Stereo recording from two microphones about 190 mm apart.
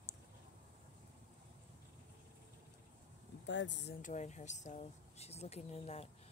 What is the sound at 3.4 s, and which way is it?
Speech, 70° left (ahead or behind).